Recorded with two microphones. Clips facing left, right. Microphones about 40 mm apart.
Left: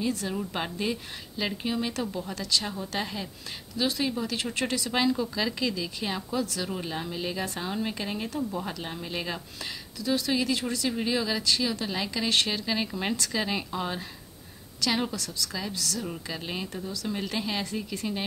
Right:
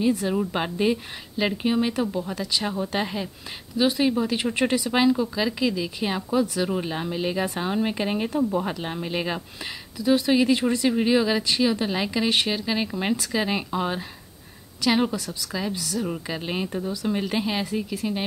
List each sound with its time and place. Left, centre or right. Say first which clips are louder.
0.0 s speech: right 7 dB; centre